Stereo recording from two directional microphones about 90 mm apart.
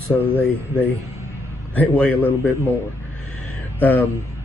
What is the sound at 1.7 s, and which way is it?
Speech, 15° left (ahead or behind).